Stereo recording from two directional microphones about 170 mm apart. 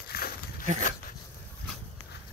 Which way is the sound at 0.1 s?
60° left (ahead or behind).